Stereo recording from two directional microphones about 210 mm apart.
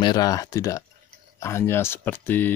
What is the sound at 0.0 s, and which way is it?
Speech, 20° left (ahead or behind).